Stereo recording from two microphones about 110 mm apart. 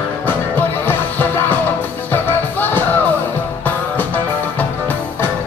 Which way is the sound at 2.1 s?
15° left (ahead or behind).